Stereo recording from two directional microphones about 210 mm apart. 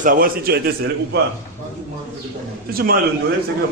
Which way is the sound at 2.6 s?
45° right (ahead or behind).